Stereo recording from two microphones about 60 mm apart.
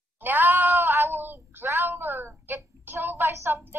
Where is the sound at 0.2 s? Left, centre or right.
Right.